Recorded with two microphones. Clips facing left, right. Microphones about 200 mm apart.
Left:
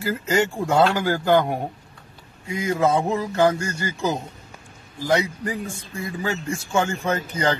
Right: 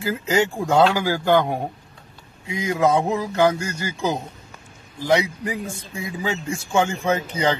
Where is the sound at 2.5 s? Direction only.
20° right (ahead or behind).